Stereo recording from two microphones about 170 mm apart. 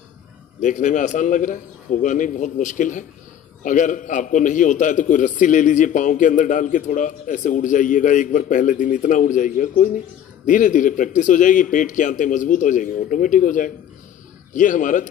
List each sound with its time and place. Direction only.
0.6 s a man's voice: 45° left (ahead or behind)